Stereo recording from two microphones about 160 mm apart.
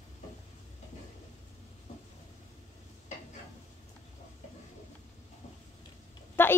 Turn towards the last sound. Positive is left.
turn(degrees=15)  # may be behind; listen again after turning